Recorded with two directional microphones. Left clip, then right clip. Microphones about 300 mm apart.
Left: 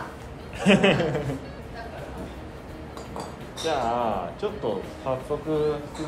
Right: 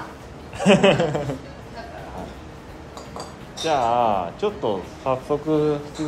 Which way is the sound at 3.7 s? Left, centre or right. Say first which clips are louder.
Right 6 dB; right.